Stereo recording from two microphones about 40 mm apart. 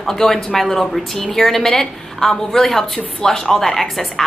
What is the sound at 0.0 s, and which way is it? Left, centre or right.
A woman's voice, centre.